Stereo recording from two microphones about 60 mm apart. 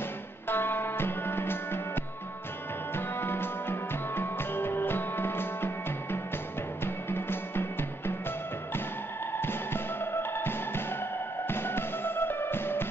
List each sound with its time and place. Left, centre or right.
0.5 s music: left
3.0 s music: left
9.4 s music: left